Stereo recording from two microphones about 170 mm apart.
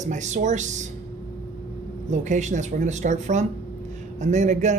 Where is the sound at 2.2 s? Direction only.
45° right (ahead or behind).